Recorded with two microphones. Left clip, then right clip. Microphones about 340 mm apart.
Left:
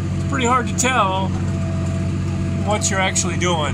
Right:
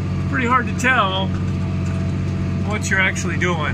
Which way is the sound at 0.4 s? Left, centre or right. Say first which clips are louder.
Even; centre.